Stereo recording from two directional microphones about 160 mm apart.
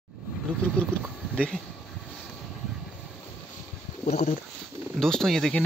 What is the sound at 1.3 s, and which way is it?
Speech, 5° left (ahead or behind).